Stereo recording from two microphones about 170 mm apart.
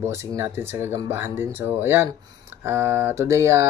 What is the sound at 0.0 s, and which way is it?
Speech, 15° right (ahead or behind).